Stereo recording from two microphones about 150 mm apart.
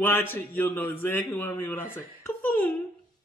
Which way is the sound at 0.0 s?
15° left (ahead or behind).